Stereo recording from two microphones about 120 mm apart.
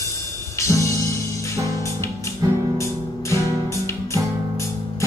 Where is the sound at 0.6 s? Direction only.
25° left (ahead or behind).